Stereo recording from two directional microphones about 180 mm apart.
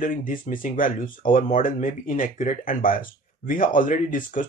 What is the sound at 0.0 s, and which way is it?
Speech, 50° left (ahead or behind).